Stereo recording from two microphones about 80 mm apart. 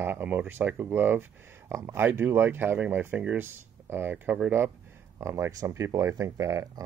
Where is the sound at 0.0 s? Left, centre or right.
Right.